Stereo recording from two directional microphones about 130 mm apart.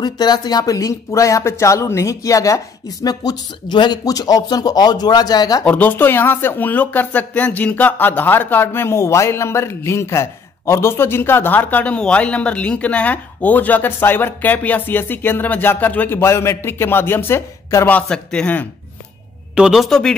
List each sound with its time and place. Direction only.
0.0 s speech: 30° left (ahead or behind)
5.7 s speech: 15° left (ahead or behind)
17.8 s speech: 10° left (ahead or behind)
19.5 s speech: 5° right (ahead or behind)